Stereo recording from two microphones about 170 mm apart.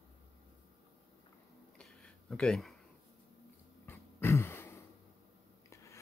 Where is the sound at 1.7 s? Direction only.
5° left (ahead or behind).